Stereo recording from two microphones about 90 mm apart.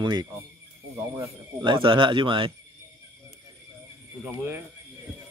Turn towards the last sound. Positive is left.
turn(degrees=-25)  # may be behind; listen again after turning